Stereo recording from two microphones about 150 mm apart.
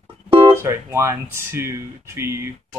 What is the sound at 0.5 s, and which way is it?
Speech, 15° right (ahead or behind).